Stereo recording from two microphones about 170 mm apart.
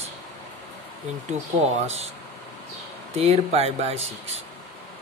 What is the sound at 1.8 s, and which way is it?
Speech, 40° right (ahead or behind).